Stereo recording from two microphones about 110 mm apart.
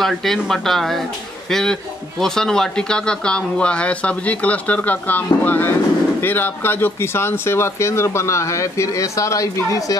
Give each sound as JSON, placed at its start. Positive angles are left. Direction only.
{"t": 0.0, "sound": "speech", "side_deg": 5}